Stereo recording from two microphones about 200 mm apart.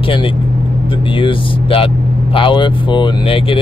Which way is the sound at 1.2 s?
25° left (ahead or behind).